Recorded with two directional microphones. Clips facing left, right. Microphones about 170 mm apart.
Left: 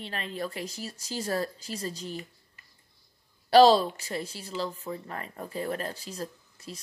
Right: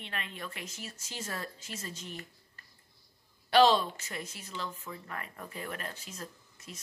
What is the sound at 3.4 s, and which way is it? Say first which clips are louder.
A woman's voice: left 6 dB; 35° left (ahead or behind).